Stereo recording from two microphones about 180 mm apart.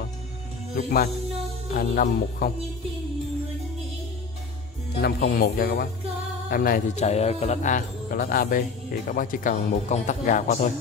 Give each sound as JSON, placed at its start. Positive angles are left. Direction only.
{"t": 0.7, "sound": "speech", "side_deg": 60}
{"t": 5.0, "sound": "speech", "side_deg": 60}
{"t": 7.1, "sound": "speech", "side_deg": 35}